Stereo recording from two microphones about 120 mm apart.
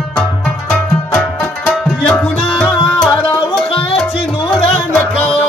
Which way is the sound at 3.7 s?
50° left (ahead or behind).